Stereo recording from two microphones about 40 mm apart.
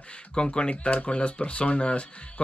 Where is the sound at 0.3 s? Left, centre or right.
Left.